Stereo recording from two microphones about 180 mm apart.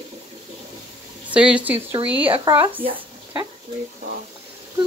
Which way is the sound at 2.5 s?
25° right (ahead or behind).